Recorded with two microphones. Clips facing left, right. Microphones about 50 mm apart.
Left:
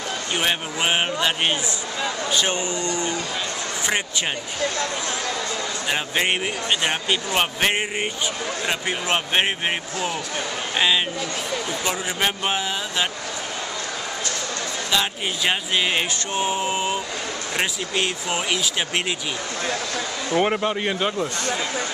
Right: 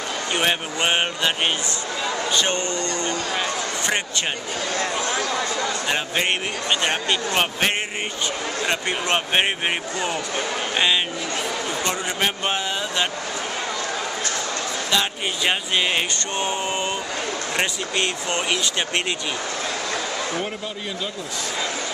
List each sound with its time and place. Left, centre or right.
0.3 s a man's voice: centre
2.3 s speech: centre
5.9 s speech: centre
11.8 s speech: centre
14.9 s speech: centre
20.3 s a man's voice: left